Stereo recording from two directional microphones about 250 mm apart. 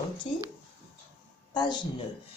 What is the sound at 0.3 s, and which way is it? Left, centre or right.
Speech, left.